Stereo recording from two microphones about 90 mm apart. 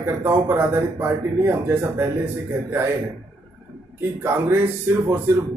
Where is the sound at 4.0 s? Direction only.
25° right (ahead or behind).